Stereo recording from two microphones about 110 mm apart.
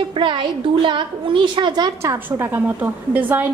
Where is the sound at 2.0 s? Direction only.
25° right (ahead or behind).